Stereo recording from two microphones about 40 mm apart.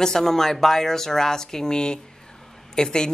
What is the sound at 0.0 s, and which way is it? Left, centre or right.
Speech, centre.